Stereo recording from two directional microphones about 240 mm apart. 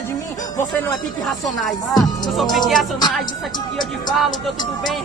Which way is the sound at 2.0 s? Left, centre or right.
Centre.